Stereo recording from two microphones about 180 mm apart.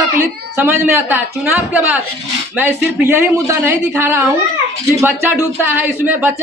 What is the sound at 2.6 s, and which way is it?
A woman's voice, 10° right (ahead or behind).